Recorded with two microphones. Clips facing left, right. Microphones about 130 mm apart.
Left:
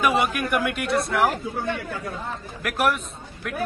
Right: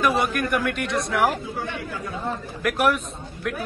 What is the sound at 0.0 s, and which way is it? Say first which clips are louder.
A man's voice: even; 10° left (ahead or behind).